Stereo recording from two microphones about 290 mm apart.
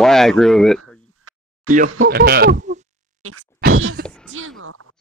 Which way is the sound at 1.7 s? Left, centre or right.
Right.